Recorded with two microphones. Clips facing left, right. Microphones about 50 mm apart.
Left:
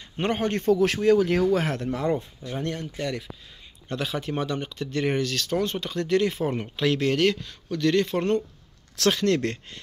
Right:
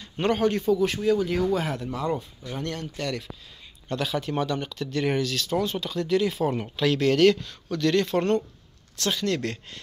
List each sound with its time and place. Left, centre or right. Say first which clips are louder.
0.0 s a sound: right 2 dB; left
0.7 s speech: left 7 dB; left
2.0 s speech: left 2 dB; left
2.5 s speech: left 1 dB; centre
5.3 s speech: even; left
6.4 s speech: right 1 dB; left
9.1 s speech: even; left